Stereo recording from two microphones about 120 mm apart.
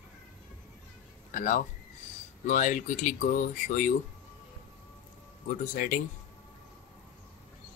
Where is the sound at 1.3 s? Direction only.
90° left.